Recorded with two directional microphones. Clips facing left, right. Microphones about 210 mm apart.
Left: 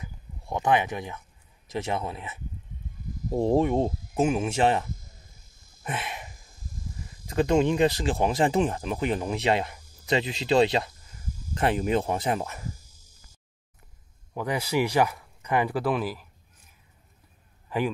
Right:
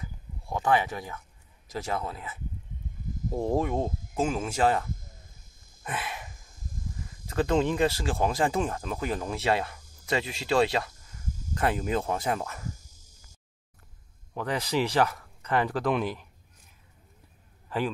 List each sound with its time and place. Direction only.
0.0 s a sound: 20° left (ahead or behind)
1.7 s speech: 25° left (ahead or behind)
3.3 s speech: 25° left (ahead or behind)
5.9 s sniff: 25° left (ahead or behind)
7.2 s speech: 15° left (ahead or behind)
14.3 s speech: 10° left (ahead or behind)
17.6 s a man's voice: 10° left (ahead or behind)